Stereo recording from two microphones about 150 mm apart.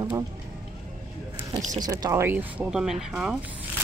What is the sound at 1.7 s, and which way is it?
Speech, 25° right (ahead or behind).